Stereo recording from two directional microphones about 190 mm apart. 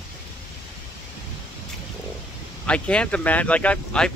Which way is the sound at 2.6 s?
5° left (ahead or behind).